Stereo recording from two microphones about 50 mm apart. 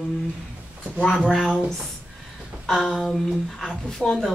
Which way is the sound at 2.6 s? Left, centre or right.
Centre.